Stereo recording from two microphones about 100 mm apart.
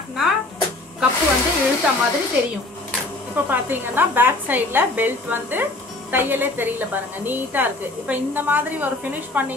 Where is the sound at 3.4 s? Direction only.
20° right (ahead or behind).